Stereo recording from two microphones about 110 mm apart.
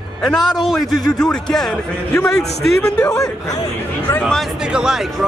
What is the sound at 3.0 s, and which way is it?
Speech, 30° left (ahead or behind).